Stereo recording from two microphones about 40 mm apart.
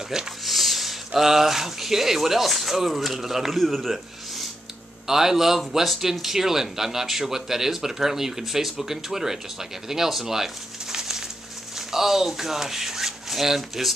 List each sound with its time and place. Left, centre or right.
0.1 s a man's voice: centre